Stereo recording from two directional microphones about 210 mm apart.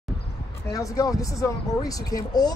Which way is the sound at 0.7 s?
15° left (ahead or behind).